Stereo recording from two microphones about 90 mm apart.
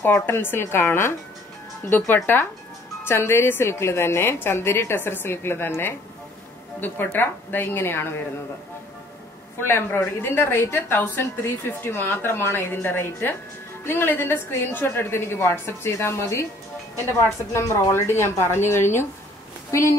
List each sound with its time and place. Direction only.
0.0 s a woman's voice: 25° left (ahead or behind)
9.6 s a woman's voice: 25° left (ahead or behind)